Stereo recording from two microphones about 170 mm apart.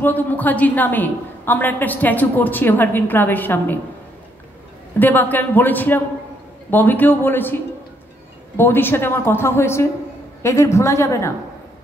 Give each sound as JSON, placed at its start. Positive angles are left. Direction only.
{"t": 0.0, "sound": "a woman's voice", "side_deg": 10}
{"t": 4.9, "sound": "a woman's voice", "side_deg": 10}